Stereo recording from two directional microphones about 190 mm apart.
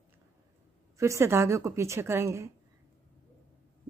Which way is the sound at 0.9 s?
15° right (ahead or behind).